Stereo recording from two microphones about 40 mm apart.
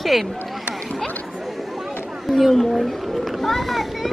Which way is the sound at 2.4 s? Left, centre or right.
Centre.